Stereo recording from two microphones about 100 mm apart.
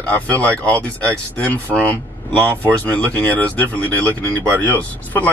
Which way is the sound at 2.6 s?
10° left (ahead or behind).